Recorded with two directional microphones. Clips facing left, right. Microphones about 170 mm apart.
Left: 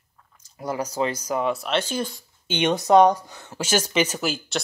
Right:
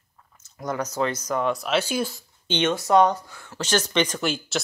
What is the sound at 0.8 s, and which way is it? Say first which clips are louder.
Speech: left 1 dB; 10° left (ahead or behind).